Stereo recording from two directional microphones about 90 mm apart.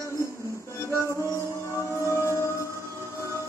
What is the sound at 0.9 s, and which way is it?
Music, 30° left (ahead or behind).